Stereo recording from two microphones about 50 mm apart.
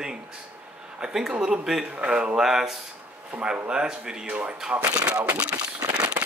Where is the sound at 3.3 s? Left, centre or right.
Right.